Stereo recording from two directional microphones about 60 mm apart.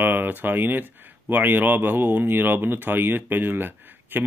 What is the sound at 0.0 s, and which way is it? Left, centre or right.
Speech, right.